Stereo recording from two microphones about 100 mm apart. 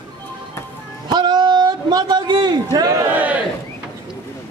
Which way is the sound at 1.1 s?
45° right (ahead or behind).